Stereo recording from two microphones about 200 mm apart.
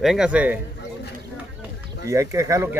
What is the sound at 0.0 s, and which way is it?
Speech, 5° right (ahead or behind).